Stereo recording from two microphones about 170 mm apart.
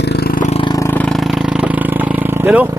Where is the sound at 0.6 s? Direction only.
25° left (ahead or behind).